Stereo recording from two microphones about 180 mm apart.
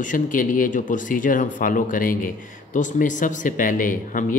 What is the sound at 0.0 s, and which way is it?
Speech, 45° left (ahead or behind).